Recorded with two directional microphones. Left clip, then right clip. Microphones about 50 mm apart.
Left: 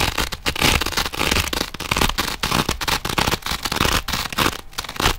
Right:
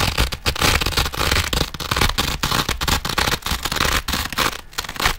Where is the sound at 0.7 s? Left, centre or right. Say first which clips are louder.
Right 1 dB; centre.